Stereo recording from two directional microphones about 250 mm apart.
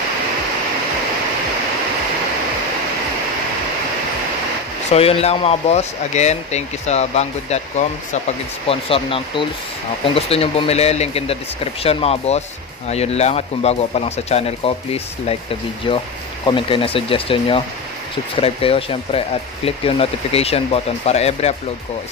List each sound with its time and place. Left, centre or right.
4.9 s speech: left
8.6 s speech: left